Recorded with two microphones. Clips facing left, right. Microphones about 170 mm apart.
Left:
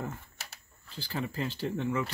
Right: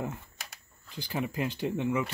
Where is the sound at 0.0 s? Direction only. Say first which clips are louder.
Right 2 dB; 15° right (ahead or behind).